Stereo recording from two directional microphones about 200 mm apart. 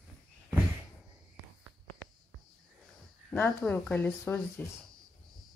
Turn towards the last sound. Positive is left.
turn(degrees=10)  # may be behind; listen again after turning